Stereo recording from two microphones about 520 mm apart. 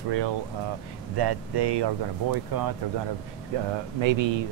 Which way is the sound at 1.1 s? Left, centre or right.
Right.